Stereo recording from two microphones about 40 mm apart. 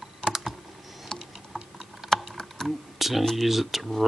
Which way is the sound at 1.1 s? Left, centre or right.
Centre.